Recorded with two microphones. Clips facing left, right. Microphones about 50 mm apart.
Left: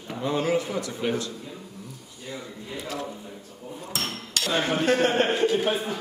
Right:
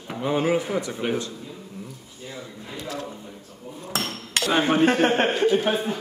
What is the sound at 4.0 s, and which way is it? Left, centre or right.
Hammer, right.